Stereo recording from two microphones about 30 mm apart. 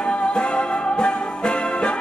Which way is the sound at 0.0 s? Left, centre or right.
Left.